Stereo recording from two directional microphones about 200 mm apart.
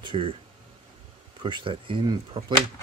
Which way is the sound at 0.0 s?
25° right (ahead or behind).